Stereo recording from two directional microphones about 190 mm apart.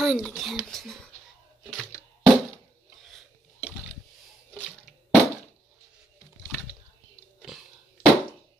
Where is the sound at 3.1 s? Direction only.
5° left (ahead or behind).